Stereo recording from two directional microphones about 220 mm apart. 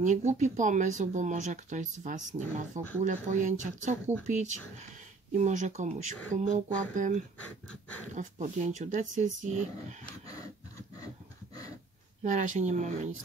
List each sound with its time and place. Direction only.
0.0 s speech: 30° right (ahead or behind)
12.2 s speech: 35° right (ahead or behind)